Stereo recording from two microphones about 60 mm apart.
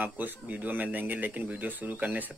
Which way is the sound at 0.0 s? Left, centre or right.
Right.